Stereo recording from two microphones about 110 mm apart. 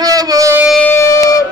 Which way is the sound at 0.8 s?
20° left (ahead or behind).